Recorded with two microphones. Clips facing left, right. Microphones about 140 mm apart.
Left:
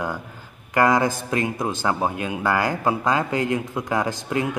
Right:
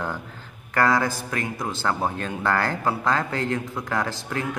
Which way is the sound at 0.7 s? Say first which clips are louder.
Left 3 dB; 20° left (ahead or behind).